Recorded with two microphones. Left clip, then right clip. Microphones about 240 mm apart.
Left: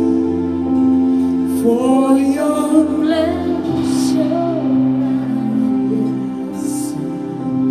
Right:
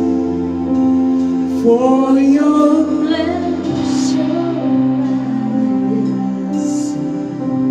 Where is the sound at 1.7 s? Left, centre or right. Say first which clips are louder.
Right 3 dB; left.